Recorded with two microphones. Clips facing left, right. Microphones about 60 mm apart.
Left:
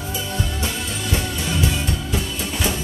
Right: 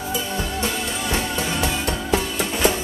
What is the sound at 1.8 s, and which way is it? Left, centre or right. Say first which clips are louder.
Music: right 3 dB; right.